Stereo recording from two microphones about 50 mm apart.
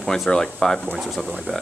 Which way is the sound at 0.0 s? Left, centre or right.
Centre.